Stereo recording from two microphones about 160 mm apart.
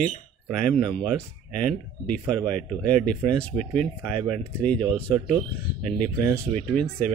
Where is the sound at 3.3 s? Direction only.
5° left (ahead or behind).